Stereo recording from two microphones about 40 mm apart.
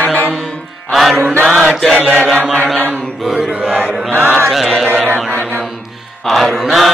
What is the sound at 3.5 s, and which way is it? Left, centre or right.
Chant, right.